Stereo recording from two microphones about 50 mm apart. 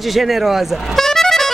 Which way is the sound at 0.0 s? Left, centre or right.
Centre.